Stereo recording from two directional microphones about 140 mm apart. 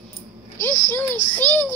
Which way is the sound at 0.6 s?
15° left (ahead or behind).